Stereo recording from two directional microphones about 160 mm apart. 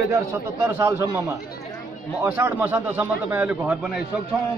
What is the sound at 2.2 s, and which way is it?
A man's voice, 10° right (ahead or behind).